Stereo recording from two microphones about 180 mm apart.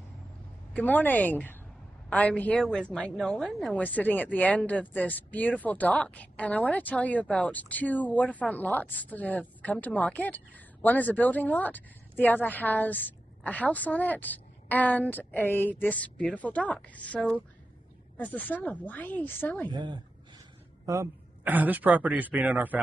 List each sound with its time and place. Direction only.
0.7 s speech: 10° left (ahead or behind)
19.7 s a woman's voice: 25° right (ahead or behind); by 22.8 s 10° right (ahead or behind)